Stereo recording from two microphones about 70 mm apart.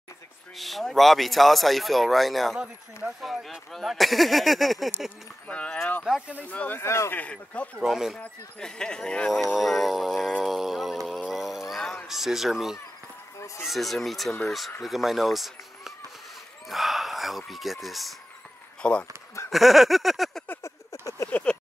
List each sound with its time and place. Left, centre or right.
0.6 s speech: centre
5.5 s speech: centre
6.8 s speech: left
7.2 s speech: centre
7.8 s speech: centre
8.2 s speech: centre
9.6 s speech: centre
10.4 s a sound: centre
12.1 s speech: centre
18.8 s speech: centre
19.5 s speech: centre
20.6 s a sound: left
21.3 s a sound: left